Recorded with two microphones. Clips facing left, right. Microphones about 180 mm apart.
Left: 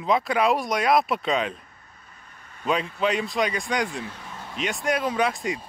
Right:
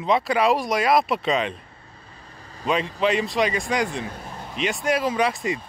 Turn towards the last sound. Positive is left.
turn(degrees=0)  # may be behind; listen again after turning